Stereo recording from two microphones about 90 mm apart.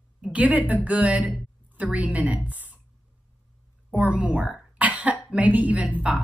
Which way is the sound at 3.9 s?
15° right (ahead or behind).